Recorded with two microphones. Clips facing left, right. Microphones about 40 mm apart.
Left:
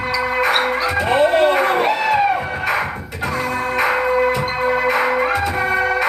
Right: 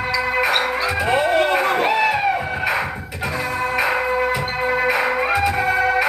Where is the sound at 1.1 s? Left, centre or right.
Left.